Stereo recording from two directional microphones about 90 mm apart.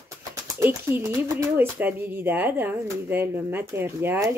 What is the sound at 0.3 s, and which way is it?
Speech, 30° right (ahead or behind).